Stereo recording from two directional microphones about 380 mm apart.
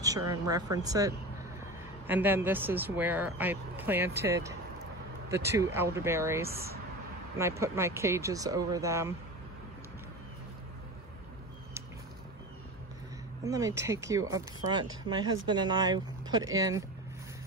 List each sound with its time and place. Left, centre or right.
0.3 s speech: centre
6.5 s speech: right
7.3 s speech: centre
13.4 s speech: centre